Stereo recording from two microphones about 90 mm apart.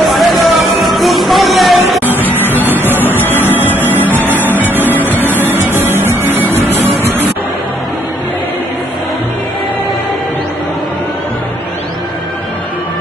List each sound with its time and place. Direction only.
0.1 s music: centre (ahead or behind)
2.2 s music: 20° left (ahead or behind)
2.9 s music: 20° right (ahead or behind)
3.2 s music: 20° left (ahead or behind)
3.9 s music: 20° right (ahead or behind)
4.8 s music: 20° left (ahead or behind)
5.3 s music: 25° right (ahead or behind)